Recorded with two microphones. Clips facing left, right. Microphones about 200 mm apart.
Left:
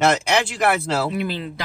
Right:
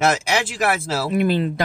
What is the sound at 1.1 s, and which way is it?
Speech, 50° right (ahead or behind).